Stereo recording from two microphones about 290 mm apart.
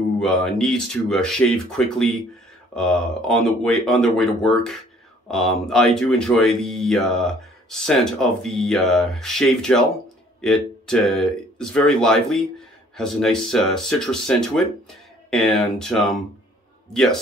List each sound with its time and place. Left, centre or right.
0.2 s speech: centre